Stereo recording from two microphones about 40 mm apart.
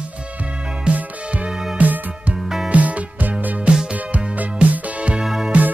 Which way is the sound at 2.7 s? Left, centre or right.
Right.